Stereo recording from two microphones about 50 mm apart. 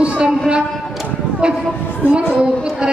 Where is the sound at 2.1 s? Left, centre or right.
Centre.